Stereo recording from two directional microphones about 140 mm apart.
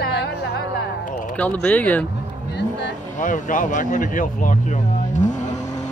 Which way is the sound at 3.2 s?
70° left (ahead or behind).